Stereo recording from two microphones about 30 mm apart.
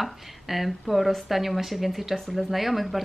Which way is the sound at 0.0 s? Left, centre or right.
Centre.